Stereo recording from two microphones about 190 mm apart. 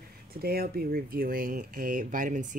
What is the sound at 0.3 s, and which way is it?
Speech, 55° right (ahead or behind).